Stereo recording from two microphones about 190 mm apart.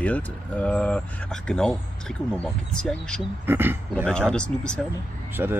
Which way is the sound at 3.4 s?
10° right (ahead or behind).